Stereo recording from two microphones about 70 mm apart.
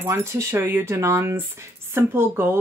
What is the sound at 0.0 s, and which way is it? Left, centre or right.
Speech, right.